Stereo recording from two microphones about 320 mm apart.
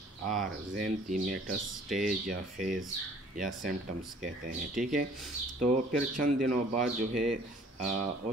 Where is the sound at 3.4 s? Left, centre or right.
Centre.